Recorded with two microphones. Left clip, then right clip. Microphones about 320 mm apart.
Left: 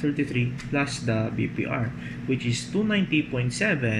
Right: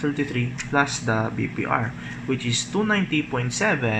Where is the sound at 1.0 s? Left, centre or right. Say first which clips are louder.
Right 3 dB; right.